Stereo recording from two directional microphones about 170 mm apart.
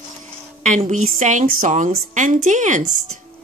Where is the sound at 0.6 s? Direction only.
45° right (ahead or behind).